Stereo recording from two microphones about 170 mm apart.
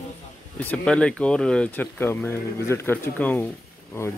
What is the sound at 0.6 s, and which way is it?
Speech, 10° left (ahead or behind).